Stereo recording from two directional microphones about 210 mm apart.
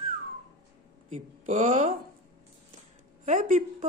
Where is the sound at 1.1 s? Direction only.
35° right (ahead or behind).